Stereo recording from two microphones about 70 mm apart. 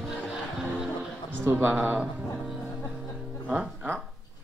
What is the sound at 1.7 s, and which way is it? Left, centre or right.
Speech, right.